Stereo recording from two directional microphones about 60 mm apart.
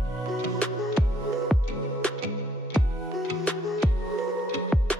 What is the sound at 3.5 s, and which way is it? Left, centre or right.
Music, centre.